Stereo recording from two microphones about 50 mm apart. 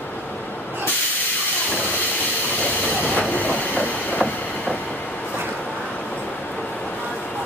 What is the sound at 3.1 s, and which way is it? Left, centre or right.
Train, left.